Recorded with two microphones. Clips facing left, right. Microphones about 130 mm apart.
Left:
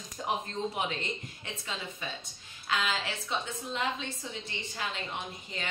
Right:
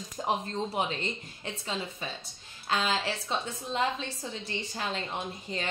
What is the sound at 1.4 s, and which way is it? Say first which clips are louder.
A woman's voice: right 4 dB; 35° right (ahead or behind).